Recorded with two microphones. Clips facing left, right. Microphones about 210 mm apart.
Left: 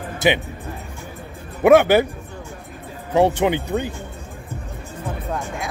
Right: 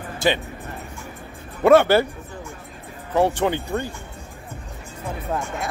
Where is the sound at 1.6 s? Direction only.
15° left (ahead or behind).